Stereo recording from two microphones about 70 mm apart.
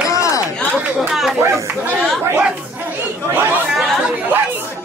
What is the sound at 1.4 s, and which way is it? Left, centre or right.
Speech, right.